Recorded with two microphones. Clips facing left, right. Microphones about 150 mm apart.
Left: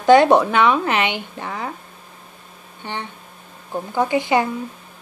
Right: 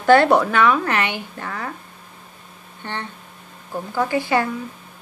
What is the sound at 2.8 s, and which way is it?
A woman's voice, 15° left (ahead or behind).